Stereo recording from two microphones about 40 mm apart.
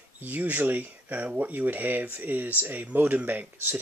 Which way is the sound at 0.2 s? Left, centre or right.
Right.